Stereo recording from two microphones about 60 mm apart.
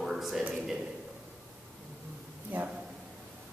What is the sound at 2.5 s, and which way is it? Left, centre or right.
Speech, right.